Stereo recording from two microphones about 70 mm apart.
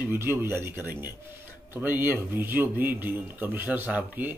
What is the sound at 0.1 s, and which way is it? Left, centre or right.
Speech, right.